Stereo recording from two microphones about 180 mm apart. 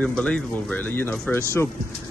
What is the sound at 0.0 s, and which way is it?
Speech, 5° left (ahead or behind).